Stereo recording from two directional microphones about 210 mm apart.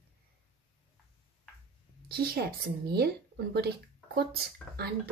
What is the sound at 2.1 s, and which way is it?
A woman's voice, 50° right (ahead or behind).